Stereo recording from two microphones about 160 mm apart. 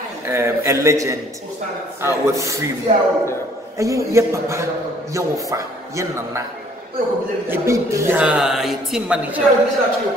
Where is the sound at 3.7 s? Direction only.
20° right (ahead or behind).